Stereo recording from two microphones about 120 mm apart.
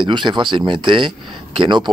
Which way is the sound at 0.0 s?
40° right (ahead or behind).